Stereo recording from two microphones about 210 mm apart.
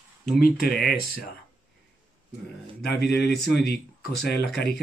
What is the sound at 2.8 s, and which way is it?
Speech, 50° left (ahead or behind).